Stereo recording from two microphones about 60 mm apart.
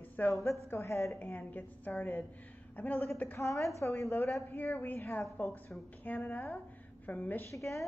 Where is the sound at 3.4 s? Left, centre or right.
Left.